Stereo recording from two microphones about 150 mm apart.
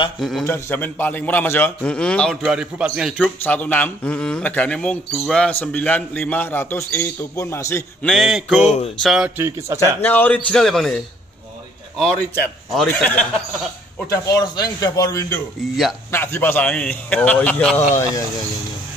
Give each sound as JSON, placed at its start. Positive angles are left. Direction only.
{"t": 0.2, "sound": "a man's voice", "side_deg": 0}
{"t": 0.5, "sound": "speech", "side_deg": 15}
{"t": 2.4, "sound": "a man's voice", "side_deg": -5}
{"t": 3.2, "sound": "speech", "side_deg": 10}
{"t": 8.0, "sound": "a man's voice", "side_deg": 0}
{"t": 8.5, "sound": "a sound", "side_deg": 50}
{"t": 9.0, "sound": "a man's voice", "side_deg": 0}
{"t": 9.8, "sound": "speech", "side_deg": 10}
{"t": 12.4, "sound": "speech", "side_deg": 10}
{"t": 14.0, "sound": "a man's voice", "side_deg": 20}